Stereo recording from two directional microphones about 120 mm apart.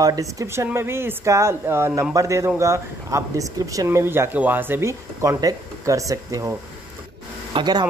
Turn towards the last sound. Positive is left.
turn(degrees=-35)  # may be behind; listen again after turning